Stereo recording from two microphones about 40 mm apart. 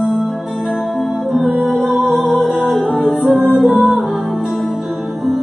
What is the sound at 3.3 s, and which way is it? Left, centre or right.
Music, centre.